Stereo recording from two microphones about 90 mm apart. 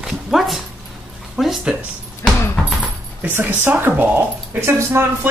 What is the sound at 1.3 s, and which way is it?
Speech, centre (ahead or behind).